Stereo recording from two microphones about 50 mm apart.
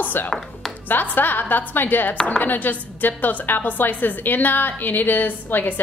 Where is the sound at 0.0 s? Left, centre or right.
Left.